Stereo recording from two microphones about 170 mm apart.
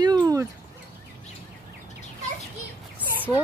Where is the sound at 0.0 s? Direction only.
20° right (ahead or behind).